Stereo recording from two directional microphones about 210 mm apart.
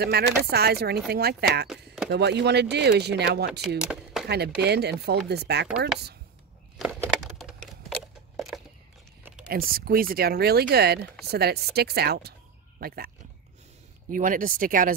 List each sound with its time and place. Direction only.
0.0 s speech: 50° right (ahead or behind)
3.6 s a sound: 5° right (ahead or behind)
4.3 s speech: 50° right (ahead or behind)
6.8 s a sound: 5° right (ahead or behind)
9.5 s speech: 45° right (ahead or behind)
14.1 s speech: 40° right (ahead or behind)